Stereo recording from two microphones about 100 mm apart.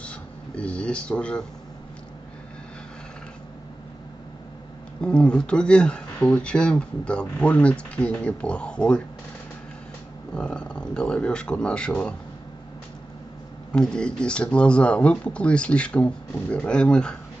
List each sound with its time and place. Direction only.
0.0 s a sound: 10° left (ahead or behind)
5.0 s speech: 10° left (ahead or behind)
10.3 s speech: 10° left (ahead or behind)
13.7 s speech: 10° left (ahead or behind)